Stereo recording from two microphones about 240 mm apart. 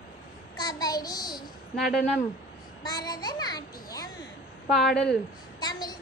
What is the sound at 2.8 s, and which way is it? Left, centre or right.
Children playing, centre.